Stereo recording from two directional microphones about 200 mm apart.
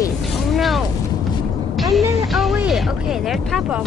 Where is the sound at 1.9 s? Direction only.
Centre (ahead or behind).